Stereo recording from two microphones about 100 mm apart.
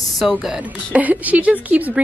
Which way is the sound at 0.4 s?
10° right (ahead or behind).